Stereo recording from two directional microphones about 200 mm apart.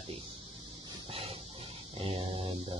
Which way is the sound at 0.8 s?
30° right (ahead or behind).